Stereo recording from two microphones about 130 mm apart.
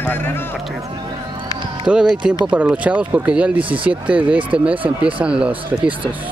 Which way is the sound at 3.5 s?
40° right (ahead or behind).